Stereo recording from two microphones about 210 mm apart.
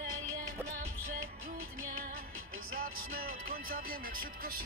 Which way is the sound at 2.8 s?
45° right (ahead or behind).